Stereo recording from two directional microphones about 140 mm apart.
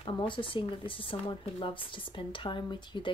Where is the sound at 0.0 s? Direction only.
40° left (ahead or behind).